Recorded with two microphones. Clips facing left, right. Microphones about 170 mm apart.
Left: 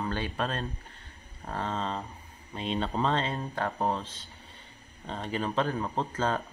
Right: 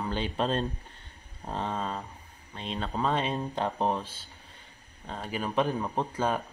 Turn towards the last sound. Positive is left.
turn(degrees=-15)  # may be behind; listen again after turning